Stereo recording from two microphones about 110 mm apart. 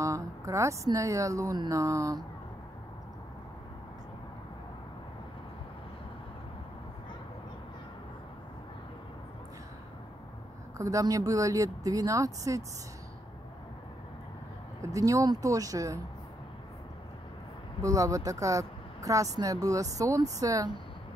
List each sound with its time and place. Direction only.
0.0 s speech: 30° right (ahead or behind)
10.8 s speech: 30° right (ahead or behind)
14.8 s speech: 30° right (ahead or behind)
17.8 s speech: 30° right (ahead or behind)